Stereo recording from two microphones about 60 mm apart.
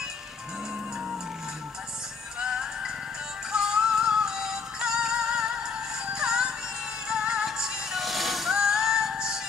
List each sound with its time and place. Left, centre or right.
2.4 s music: centre